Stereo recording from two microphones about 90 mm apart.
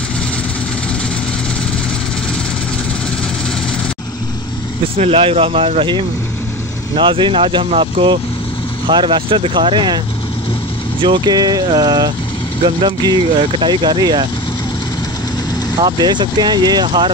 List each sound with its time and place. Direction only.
4.9 s speech: 90° right
7.0 s speech: 65° right (ahead or behind)
8.8 s speech: 65° right (ahead or behind)
11.0 s speech: 60° right (ahead or behind)
15.8 s speech: 55° right (ahead or behind)